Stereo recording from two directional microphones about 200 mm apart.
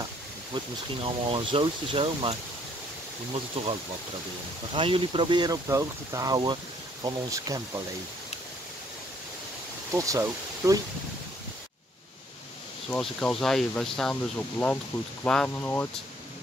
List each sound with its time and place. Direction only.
1.0 s speech: 25° right (ahead or behind)
3.6 s speech: 30° right (ahead or behind)
4.7 s speech: 25° right (ahead or behind)
9.9 s speech: 15° right (ahead or behind)
12.9 s speech: 5° left (ahead or behind)
15.2 s speech: 5° left (ahead or behind)